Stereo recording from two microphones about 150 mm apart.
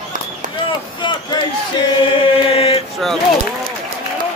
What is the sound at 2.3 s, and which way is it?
Chant, 40° left (ahead or behind).